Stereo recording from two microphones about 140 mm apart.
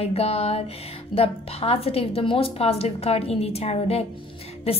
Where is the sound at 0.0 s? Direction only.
45° left (ahead or behind).